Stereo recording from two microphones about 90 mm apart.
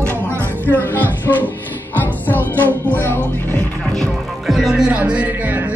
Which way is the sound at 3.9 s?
Centre (ahead or behind).